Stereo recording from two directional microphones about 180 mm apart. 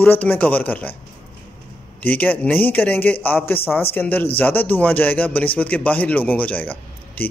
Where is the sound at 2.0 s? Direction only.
10° left (ahead or behind).